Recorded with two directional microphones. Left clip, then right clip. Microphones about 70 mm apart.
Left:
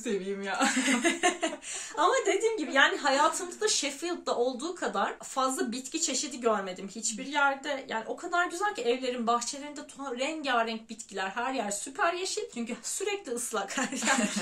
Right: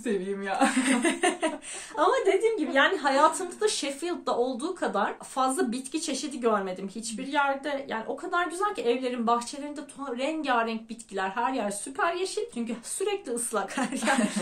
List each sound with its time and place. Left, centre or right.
0.0 s speech: left
0.7 s a woman's voice: right
2.0 s a woman's voice: right